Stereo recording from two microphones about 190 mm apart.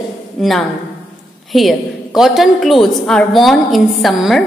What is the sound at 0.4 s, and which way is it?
A woman's voice, centre (ahead or behind).